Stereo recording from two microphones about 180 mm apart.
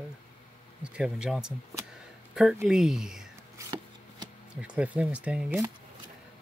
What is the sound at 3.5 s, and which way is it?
Chopping, 20° right (ahead or behind).